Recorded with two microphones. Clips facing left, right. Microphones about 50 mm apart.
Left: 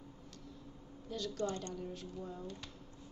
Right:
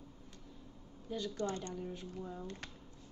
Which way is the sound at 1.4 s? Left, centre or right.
Right.